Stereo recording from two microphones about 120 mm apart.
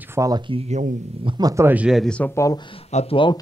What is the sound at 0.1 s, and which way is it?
Speech, 25° right (ahead or behind).